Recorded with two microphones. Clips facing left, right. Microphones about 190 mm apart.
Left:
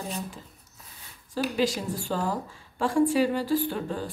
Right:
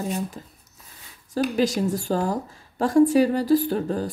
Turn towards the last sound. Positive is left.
turn(degrees=-40)  # may be behind; listen again after turning